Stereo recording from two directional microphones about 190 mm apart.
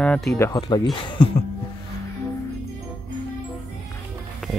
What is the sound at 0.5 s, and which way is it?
Speech, 25° left (ahead or behind).